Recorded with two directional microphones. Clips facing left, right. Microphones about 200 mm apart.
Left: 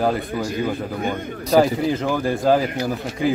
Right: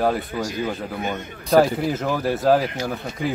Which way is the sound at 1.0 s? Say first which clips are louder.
Left 3 dB; 50° left (ahead or behind).